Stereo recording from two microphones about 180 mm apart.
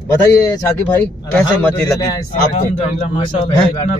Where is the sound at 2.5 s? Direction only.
35° left (ahead or behind).